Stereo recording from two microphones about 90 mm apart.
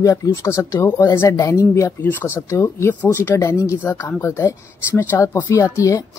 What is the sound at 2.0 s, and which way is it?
Speech, 25° left (ahead or behind).